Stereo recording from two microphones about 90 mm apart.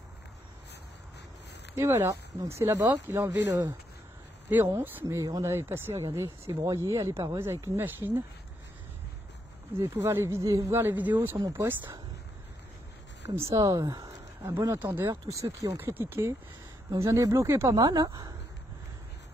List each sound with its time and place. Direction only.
1.8 s speech: 30° right (ahead or behind)
4.5 s speech: 20° right (ahead or behind)
5.1 s speech: 40° right (ahead or behind)
5.5 s speech: 30° right (ahead or behind)
9.8 s speech: 35° right (ahead or behind)
11.1 s speech: 35° right (ahead or behind)
11.6 s speech: 25° right (ahead or behind)
13.2 s speech: 35° right (ahead or behind)
13.6 s a sound: 45° right (ahead or behind)
14.8 s speech: 25° right (ahead or behind)
15.0 s speech: 40° right (ahead or behind)
15.7 s speech: 25° right (ahead or behind)
17.7 s speech: 45° right (ahead or behind)